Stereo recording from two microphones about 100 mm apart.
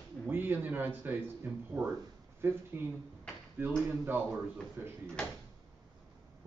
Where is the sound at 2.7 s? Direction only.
20° right (ahead or behind).